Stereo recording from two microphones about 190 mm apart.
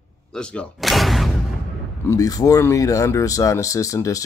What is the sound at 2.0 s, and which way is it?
Speech, 15° left (ahead or behind).